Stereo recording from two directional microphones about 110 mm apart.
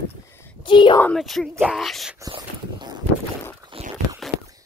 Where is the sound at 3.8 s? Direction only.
65° right (ahead or behind).